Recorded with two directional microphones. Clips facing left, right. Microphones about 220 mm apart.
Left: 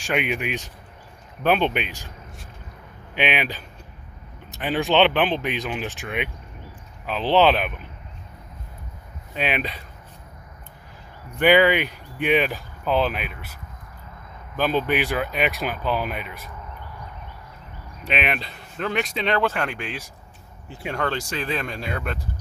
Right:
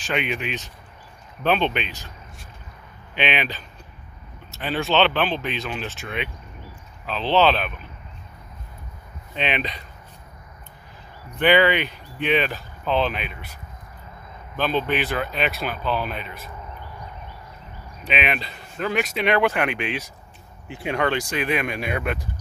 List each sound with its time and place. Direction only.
0.0 s speech: 10° left (ahead or behind)
3.2 s speech: 10° left (ahead or behind)
9.4 s speech: 5° left (ahead or behind)
11.3 s speech: 10° left (ahead or behind)
14.6 s speech: 10° left (ahead or behind)
18.1 s speech: centre (ahead or behind)